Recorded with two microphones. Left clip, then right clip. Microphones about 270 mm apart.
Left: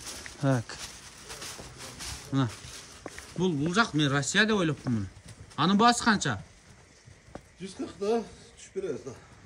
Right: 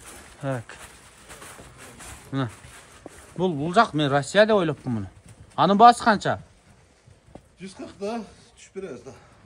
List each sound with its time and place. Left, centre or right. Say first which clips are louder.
0.4 s speech: left 1 dB; left
2.0 s a sound: right 1 dB; centre
3.3 s speech: right 7 dB; centre
7.6 s speech: left 1 dB; right